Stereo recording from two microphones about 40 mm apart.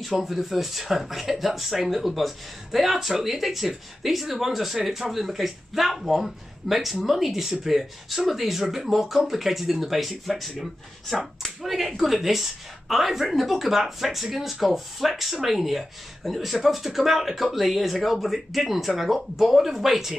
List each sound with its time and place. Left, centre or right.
0.0 s speech: centre